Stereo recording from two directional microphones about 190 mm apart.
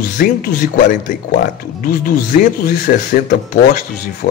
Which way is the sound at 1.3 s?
50° left (ahead or behind).